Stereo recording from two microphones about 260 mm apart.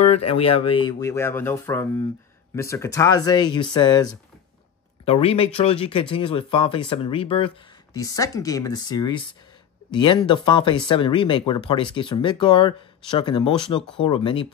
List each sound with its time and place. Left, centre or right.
0.4 s speech: left